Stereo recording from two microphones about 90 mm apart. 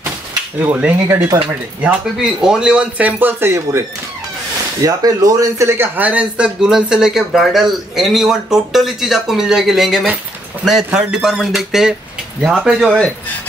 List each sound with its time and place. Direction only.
1.0 s speech: 30° right (ahead or behind)
1.8 s speech: 10° right (ahead or behind); by 3.8 s 30° right (ahead or behind)
4.8 s a man's voice: 40° right (ahead or behind); by 12.9 s 5° right (ahead or behind)